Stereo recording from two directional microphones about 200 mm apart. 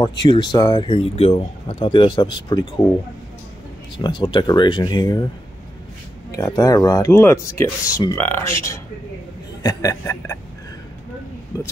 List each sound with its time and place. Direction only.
0.2 s speech: 20° left (ahead or behind)
4.0 s speech: 25° left (ahead or behind)
6.3 s speech: 15° left (ahead or behind)